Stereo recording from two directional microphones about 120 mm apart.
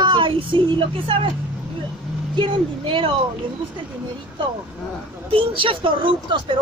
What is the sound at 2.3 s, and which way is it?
Speech, 45° right (ahead or behind).